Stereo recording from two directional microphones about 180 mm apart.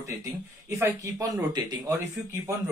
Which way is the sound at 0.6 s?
15° right (ahead or behind).